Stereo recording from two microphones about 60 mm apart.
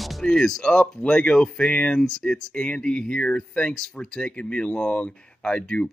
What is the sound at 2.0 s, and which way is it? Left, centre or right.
Speech, centre.